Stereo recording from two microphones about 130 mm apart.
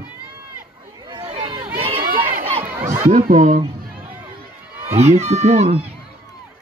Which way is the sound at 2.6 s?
20° right (ahead or behind).